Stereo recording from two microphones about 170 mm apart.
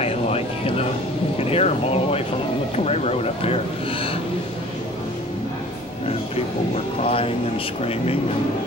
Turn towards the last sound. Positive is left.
turn(degrees=35)  # may be behind; listen again after turning